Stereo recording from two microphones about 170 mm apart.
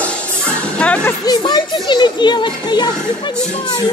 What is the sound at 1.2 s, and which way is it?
Children playing, 25° left (ahead or behind).